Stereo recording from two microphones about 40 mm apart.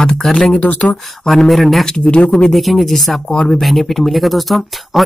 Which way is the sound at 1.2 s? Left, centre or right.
Centre.